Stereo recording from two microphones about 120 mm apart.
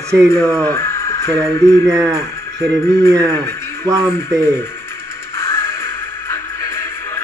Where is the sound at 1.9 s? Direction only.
30° right (ahead or behind).